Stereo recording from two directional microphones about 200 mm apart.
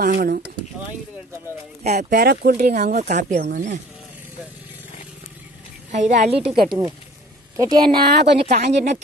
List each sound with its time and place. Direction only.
0.1 s speech: 50° right (ahead or behind)
1.8 s a woman's voice: 35° right (ahead or behind)
2.1 s speech: 50° right (ahead or behind)
5.9 s a woman's voice: 35° right (ahead or behind)
8.4 s a woman's voice: 35° right (ahead or behind)